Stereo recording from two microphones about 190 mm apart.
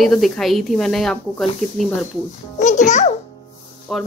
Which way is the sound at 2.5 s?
40° left (ahead or behind).